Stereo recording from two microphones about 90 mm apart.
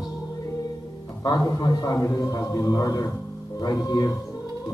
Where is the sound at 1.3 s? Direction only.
40° left (ahead or behind).